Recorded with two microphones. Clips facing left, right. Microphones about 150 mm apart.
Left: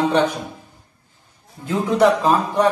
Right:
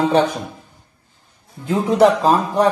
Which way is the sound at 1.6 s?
30° right (ahead or behind).